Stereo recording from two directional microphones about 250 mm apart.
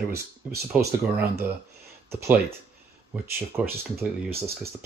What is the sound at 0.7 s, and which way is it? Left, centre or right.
Speech, centre.